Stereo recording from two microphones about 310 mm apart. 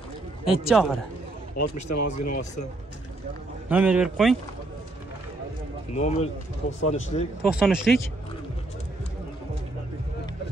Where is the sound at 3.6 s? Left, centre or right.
Centre.